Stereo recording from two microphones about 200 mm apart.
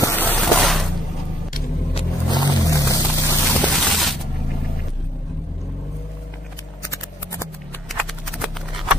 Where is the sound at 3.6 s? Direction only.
Centre (ahead or behind).